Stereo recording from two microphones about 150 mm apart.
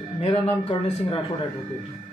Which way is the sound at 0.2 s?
40° left (ahead or behind).